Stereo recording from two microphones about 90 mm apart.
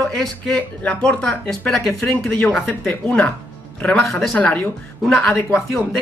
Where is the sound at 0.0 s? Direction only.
5° left (ahead or behind).